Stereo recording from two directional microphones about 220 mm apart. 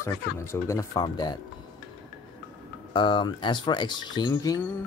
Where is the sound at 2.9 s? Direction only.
20° left (ahead or behind).